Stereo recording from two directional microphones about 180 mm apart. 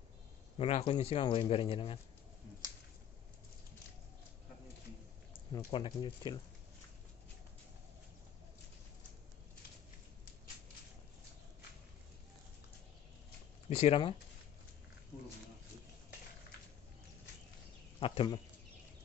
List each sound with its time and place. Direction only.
0.6 s speech: 35° left (ahead or behind)
5.5 s speech: 25° left (ahead or behind)
13.7 s speech: 35° left (ahead or behind)
18.0 s speech: 30° left (ahead or behind)